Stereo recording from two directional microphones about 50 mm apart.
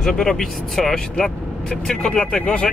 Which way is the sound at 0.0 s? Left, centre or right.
Centre.